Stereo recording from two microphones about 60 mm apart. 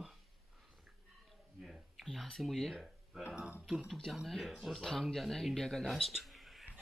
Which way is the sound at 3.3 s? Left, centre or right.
Right.